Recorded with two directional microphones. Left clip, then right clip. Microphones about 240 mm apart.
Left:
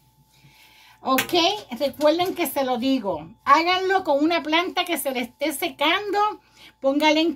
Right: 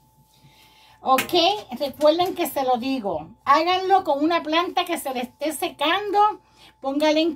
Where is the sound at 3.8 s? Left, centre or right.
Left.